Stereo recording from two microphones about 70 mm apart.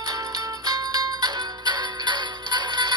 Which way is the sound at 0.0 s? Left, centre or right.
Right.